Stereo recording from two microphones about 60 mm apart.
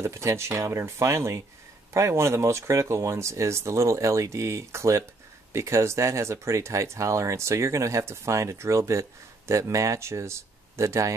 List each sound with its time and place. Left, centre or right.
0.0 s speech: right